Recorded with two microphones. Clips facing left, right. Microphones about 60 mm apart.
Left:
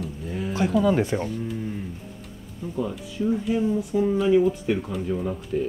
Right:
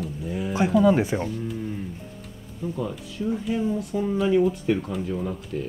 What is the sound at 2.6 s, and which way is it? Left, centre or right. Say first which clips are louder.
Speech: left 1 dB; centre.